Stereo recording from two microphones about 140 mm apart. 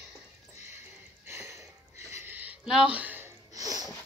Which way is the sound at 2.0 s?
15° right (ahead or behind).